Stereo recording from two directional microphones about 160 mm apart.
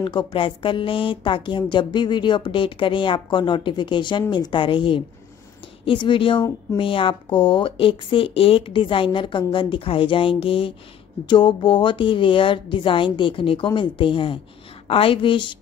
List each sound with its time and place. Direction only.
0.0 s speech: 30° left (ahead or behind)